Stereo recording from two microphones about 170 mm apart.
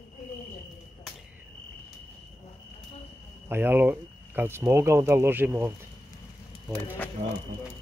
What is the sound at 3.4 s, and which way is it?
Speech, 15° right (ahead or behind).